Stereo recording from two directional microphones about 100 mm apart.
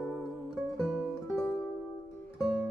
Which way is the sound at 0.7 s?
Centre (ahead or behind).